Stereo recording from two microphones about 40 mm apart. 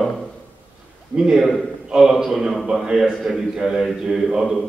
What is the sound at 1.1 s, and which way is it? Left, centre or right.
Speech, centre.